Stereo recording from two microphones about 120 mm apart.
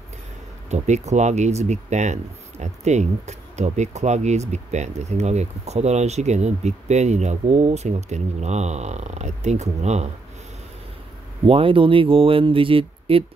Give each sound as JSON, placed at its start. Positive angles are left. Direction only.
{"t": 0.7, "sound": "speech", "side_deg": -70}
{"t": 11.4, "sound": "speech", "side_deg": -50}